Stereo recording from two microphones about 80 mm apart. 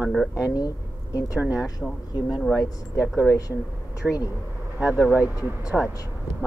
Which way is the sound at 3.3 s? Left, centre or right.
Left.